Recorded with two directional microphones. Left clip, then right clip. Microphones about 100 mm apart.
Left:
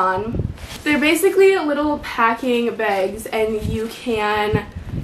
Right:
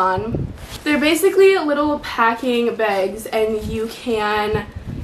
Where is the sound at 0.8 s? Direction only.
5° right (ahead or behind).